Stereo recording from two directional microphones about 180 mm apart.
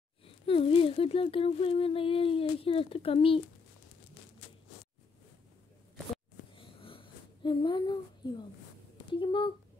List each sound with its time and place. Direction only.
0.2 s speech: 30° left (ahead or behind)
6.5 s a sound: 30° left (ahead or behind)
9.1 s speech: 25° left (ahead or behind)